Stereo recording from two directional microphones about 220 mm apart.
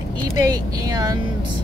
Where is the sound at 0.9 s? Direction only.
15° right (ahead or behind).